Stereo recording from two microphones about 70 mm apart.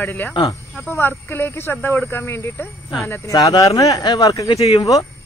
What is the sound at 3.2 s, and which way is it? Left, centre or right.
Speech, left.